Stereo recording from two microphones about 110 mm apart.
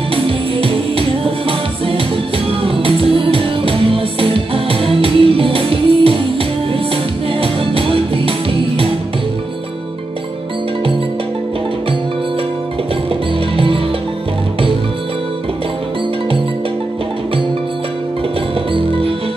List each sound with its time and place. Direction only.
0.1 s music: 55° right (ahead or behind)
18.7 s music: 55° right (ahead or behind)